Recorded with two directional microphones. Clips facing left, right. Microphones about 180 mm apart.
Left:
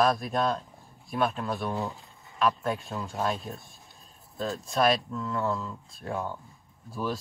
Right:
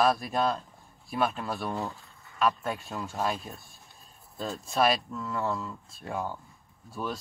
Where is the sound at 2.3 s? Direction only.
Centre (ahead or behind).